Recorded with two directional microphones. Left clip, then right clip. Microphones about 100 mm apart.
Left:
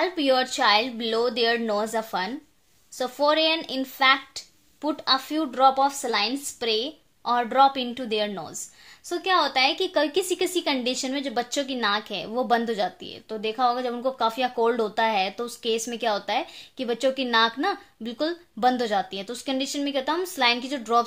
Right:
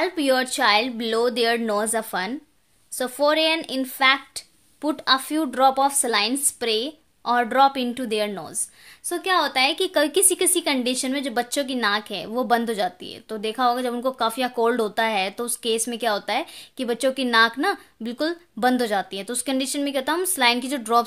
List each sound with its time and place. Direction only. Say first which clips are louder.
0.0 s speech: right 1 dB; 40° right (ahead or behind)
9.1 s speech: right 1 dB; 35° right (ahead or behind); by 21.0 s 50° right (ahead or behind)